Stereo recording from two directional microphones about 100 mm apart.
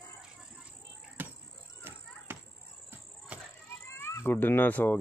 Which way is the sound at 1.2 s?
20° right (ahead or behind).